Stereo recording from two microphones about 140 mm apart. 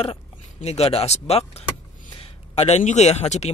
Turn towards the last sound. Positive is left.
turn(degrees=50)  # may be behind; listen again after turning